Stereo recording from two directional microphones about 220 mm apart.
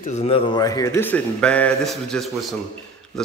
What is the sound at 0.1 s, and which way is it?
A man's voice, 25° left (ahead or behind).